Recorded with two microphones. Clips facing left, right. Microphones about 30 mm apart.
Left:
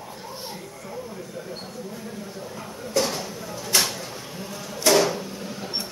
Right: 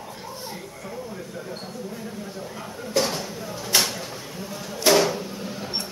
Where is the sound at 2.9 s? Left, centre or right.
Centre.